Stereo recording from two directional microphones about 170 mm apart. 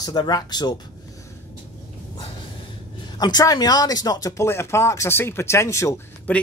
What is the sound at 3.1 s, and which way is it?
Speech, 25° left (ahead or behind).